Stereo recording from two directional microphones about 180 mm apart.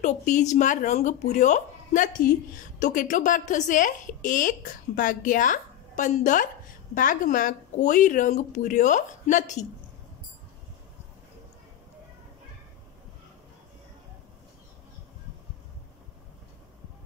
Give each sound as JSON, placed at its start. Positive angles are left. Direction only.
{"t": 0.0, "sound": "speech", "side_deg": 40}